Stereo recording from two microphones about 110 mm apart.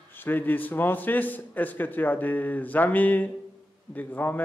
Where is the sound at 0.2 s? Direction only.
15° left (ahead or behind).